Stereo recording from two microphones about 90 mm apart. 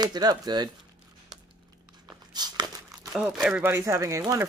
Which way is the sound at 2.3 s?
50° right (ahead or behind).